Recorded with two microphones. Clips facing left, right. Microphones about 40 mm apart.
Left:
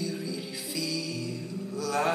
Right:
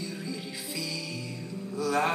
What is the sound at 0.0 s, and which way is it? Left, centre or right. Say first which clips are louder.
Music: left 3 dB; right.